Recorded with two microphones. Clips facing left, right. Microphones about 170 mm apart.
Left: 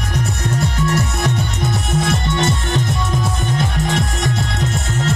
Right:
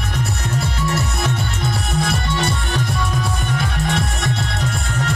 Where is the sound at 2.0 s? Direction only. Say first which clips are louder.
Left 3 dB; 20° left (ahead or behind).